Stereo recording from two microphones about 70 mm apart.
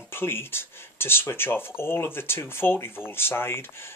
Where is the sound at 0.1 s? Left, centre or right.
Left.